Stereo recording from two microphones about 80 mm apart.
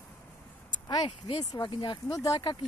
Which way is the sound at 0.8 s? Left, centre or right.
Left.